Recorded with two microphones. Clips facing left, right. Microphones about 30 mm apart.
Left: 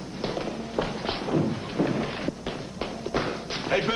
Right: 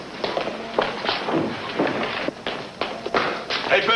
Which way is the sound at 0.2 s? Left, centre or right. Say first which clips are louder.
Right 5 dB; right.